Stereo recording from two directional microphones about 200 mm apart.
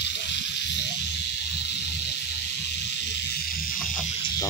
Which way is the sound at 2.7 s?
60° left (ahead or behind).